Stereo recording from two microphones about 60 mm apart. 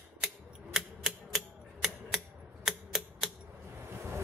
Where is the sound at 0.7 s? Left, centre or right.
Centre.